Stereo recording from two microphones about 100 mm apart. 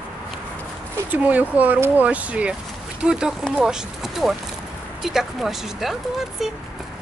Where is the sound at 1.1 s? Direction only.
15° right (ahead or behind).